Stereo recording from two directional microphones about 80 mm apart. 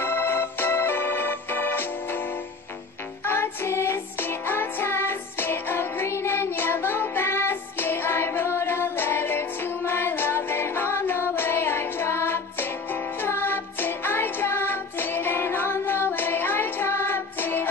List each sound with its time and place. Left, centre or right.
0.0 s organ: left
3.3 s music: left